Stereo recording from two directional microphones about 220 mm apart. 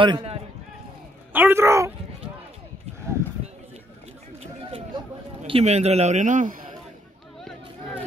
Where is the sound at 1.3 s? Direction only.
10° right (ahead or behind).